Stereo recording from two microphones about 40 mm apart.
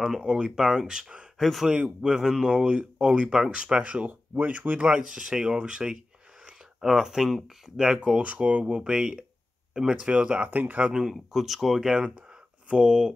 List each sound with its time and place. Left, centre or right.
0.2 s speech: right
0.6 s speech: centre
1.4 s speech: centre
2.0 s speech: centre
4.1 s speech: right
4.7 s speech: right
6.8 s speech: centre; by 10.5 s right
10.5 s speech: right
10.9 s speech: centre
11.3 s speech: centre
12.6 s speech: right